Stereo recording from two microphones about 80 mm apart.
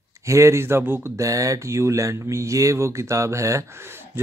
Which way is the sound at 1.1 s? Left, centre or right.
Right.